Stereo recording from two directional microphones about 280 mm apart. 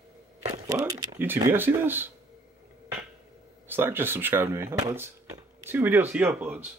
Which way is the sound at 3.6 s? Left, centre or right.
Centre.